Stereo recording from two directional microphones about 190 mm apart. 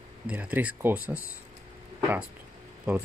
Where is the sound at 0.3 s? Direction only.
10° right (ahead or behind).